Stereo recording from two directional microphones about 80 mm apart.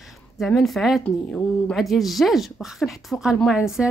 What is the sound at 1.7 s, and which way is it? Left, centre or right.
Speech, centre.